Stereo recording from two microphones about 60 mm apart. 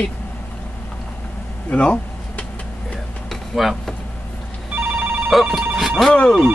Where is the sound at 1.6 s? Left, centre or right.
Left.